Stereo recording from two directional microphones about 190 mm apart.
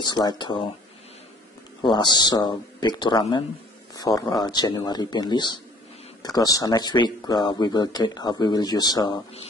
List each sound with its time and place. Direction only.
0.0 s speech: 20° left (ahead or behind)
2.0 s speech: 20° left (ahead or behind)